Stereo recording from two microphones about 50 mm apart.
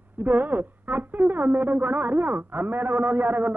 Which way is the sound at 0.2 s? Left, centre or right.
Right.